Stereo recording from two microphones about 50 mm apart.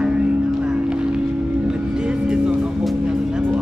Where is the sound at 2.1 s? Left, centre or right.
Centre.